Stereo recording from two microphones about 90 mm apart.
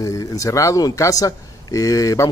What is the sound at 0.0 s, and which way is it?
Speech, 40° left (ahead or behind).